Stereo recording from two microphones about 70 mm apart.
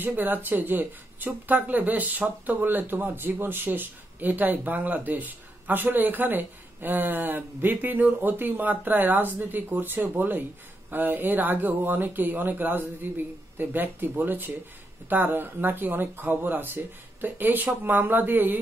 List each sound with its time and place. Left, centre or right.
0.0 s speech: right